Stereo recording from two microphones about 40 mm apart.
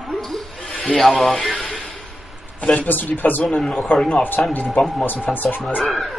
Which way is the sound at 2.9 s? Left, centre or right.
Left.